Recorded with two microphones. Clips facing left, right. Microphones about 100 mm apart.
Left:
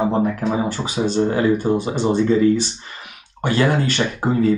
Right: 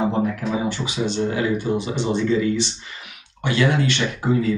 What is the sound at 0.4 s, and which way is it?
Speech, 40° left (ahead or behind).